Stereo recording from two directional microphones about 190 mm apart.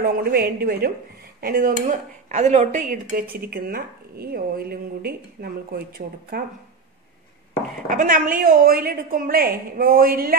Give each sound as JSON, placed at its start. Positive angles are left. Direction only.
{"t": 0.0, "sound": "speech", "side_deg": -50}
{"t": 7.9, "sound": "speech", "side_deg": -45}